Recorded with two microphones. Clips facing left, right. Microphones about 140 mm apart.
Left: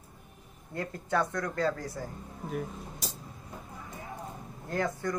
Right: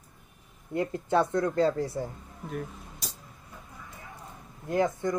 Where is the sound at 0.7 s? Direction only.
25° right (ahead or behind).